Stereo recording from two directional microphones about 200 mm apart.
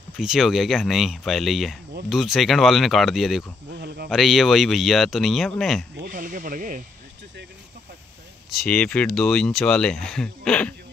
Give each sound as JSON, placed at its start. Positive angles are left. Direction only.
{"t": 0.2, "sound": "speech", "side_deg": 0}
{"t": 3.7, "sound": "speech", "side_deg": -55}
{"t": 4.1, "sound": "speech", "side_deg": 0}
{"t": 5.9, "sound": "speech", "side_deg": -45}
{"t": 8.5, "sound": "speech", "side_deg": 5}